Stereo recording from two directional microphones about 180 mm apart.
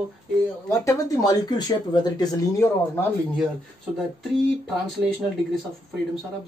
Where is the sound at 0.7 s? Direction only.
20° left (ahead or behind).